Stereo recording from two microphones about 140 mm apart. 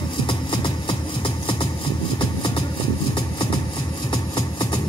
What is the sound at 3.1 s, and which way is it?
Vehicle, 35° left (ahead or behind).